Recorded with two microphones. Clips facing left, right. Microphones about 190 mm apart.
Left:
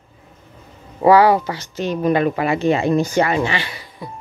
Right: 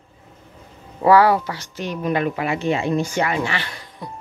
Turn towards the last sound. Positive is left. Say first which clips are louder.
# left 2 dB
turn(degrees=5)  # may be behind; listen again after turning